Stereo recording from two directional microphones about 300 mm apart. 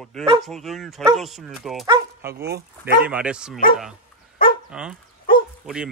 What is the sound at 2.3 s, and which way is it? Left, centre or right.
Speech, right.